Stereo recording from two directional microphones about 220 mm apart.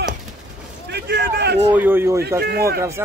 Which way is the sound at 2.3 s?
45° right (ahead or behind).